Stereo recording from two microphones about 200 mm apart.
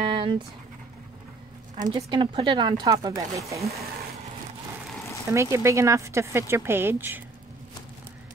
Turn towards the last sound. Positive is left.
turn(degrees=-10)  # may be behind; listen again after turning